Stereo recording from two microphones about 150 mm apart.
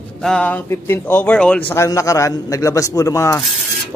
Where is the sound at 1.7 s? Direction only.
20° left (ahead or behind).